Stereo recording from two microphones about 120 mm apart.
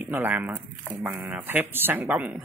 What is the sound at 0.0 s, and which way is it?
Speech, 15° right (ahead or behind).